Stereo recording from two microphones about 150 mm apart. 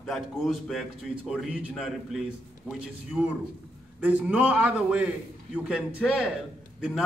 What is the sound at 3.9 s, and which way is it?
A man's voice, 10° right (ahead or behind).